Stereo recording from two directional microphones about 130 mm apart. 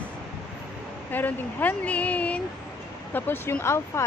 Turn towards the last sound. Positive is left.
turn(degrees=20)  # may be behind; listen again after turning